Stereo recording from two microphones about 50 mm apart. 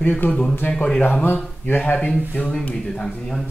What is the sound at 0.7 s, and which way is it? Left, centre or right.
Speech, centre.